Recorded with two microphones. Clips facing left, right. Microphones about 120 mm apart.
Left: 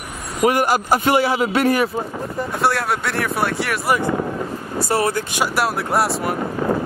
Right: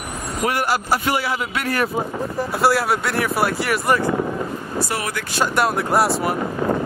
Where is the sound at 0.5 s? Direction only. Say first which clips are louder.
Left 4 dB; 15° left (ahead or behind).